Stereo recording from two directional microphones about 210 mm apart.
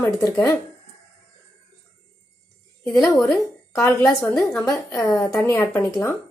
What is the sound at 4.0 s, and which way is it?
Speech, 15° left (ahead or behind).